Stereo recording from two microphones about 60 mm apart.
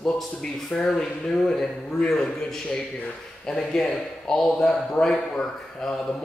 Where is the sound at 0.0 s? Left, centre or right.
Centre.